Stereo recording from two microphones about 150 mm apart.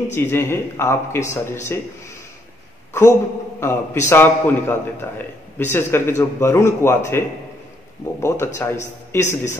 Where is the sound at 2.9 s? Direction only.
20° left (ahead or behind).